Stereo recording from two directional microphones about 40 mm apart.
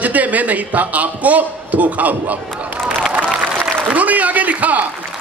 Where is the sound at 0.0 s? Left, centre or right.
Right.